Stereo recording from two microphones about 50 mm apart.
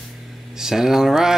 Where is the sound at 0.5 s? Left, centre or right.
Centre.